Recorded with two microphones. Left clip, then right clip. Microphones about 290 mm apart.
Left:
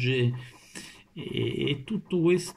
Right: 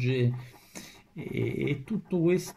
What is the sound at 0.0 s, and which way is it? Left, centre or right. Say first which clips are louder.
Speech: left 2 dB; centre.